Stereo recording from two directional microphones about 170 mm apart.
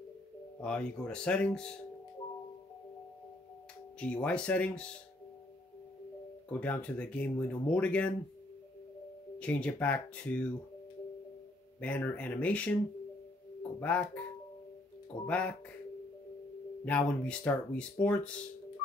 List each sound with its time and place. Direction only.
0.6 s speech: 5° left (ahead or behind)
4.0 s speech: 5° left (ahead or behind)
6.6 s speech: 10° left (ahead or behind)
9.4 s speech: 5° left (ahead or behind)
11.8 s speech: 10° left (ahead or behind)
15.2 s speech: 5° left (ahead or behind)
16.8 s speech: 5° left (ahead or behind)